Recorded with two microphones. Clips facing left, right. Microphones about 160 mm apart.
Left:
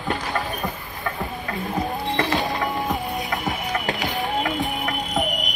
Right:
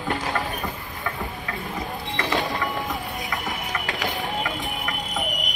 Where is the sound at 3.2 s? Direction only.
45° left (ahead or behind).